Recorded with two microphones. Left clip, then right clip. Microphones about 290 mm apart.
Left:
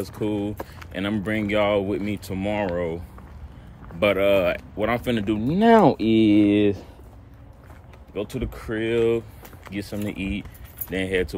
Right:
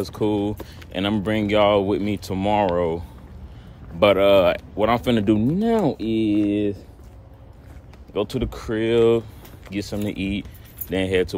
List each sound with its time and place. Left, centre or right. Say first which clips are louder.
0.2 s speech: right 4 dB; centre
4.0 s speech: right 4 dB; centre
5.6 s speech: left 5 dB; left
8.1 s speech: right 5 dB; centre